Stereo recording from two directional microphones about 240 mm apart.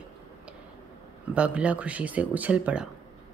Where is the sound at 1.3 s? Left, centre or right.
Centre.